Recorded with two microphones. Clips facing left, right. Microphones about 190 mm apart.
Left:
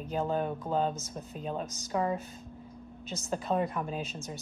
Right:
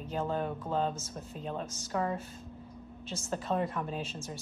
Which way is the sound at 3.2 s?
15° left (ahead or behind).